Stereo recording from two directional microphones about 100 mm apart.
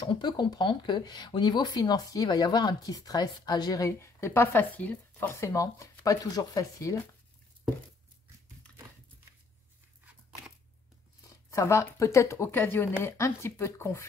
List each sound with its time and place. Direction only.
0.0 s speech: 50° left (ahead or behind); by 5.3 s 15° left (ahead or behind)
5.3 s speech: 30° left (ahead or behind)
11.2 s speech: 30° left (ahead or behind)